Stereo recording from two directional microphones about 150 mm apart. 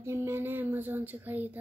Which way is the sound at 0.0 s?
20° right (ahead or behind).